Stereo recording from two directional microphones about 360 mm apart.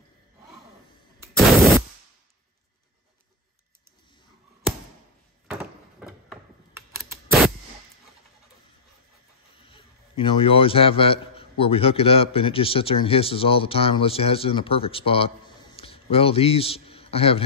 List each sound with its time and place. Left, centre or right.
1.2 s gunshot: centre
5.5 s a sound: centre
6.2 s computer keyboard: centre
9.7 s a man's voice: centre